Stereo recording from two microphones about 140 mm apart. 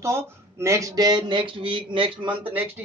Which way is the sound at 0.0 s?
20° right (ahead or behind).